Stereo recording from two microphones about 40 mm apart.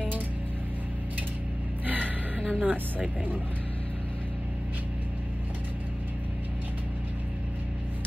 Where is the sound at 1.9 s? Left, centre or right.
Right.